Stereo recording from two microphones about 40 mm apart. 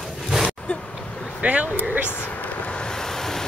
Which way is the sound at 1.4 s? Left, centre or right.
Right.